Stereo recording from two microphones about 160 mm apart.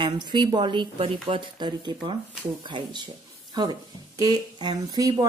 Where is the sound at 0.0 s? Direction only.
30° right (ahead or behind).